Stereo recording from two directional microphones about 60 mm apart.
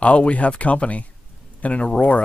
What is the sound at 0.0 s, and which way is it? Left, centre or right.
Speech, left.